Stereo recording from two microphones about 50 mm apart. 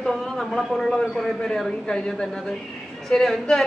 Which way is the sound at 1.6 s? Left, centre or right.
Centre.